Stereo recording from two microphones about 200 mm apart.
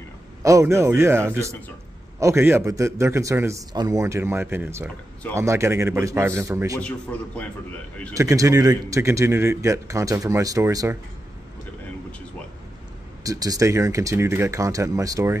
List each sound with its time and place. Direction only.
0.4 s a man's voice: 15° right (ahead or behind)
6.8 s a man's voice: 5° left (ahead or behind)
8.1 s a man's voice: 15° right (ahead or behind)
13.2 s a man's voice: 15° right (ahead or behind)